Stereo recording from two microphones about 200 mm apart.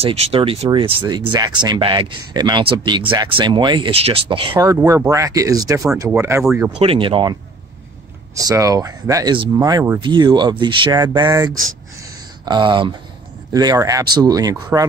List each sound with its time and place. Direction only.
0.0 s speech: 30° right (ahead or behind); by 6.4 s 15° right (ahead or behind)
6.8 s speech: 25° right (ahead or behind)
8.4 s speech: 15° right (ahead or behind)
12.0 s a sound: 20° right (ahead or behind)
13.5 s speech: 20° right (ahead or behind)